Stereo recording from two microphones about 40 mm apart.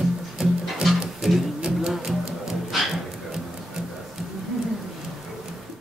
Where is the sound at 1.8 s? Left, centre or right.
Centre.